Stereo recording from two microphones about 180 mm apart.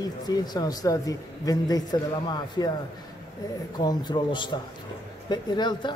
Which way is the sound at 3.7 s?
25° left (ahead or behind).